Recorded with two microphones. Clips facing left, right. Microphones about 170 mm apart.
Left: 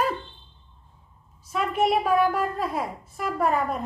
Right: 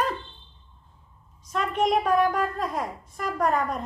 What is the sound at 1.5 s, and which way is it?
A woman's voice, 5° left (ahead or behind).